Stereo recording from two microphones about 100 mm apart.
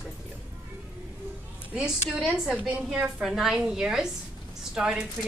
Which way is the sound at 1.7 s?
5° right (ahead or behind).